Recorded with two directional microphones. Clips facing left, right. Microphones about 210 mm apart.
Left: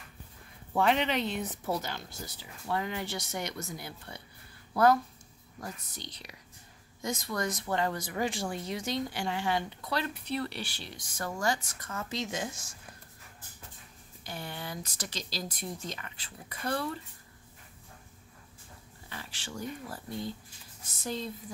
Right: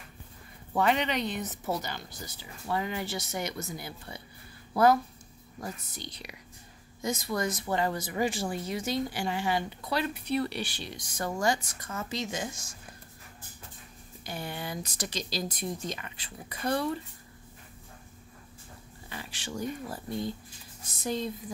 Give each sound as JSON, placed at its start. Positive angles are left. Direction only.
{"t": 0.7, "sound": "speech", "side_deg": 0}
{"t": 5.6, "sound": "speech", "side_deg": -10}
{"t": 14.2, "sound": "speech", "side_deg": -15}
{"t": 19.0, "sound": "speech", "side_deg": -15}